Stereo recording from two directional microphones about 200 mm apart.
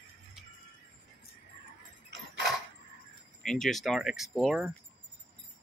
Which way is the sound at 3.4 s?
5° left (ahead or behind).